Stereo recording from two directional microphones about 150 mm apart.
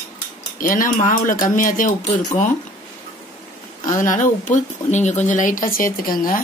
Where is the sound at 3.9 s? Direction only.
60° left (ahead or behind).